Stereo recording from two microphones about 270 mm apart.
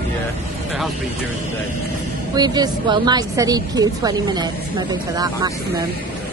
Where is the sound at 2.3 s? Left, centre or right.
Centre.